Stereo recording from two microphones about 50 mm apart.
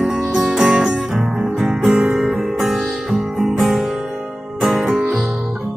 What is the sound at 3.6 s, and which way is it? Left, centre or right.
Guitar, centre.